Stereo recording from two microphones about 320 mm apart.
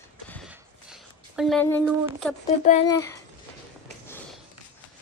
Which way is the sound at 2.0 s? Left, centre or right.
Centre.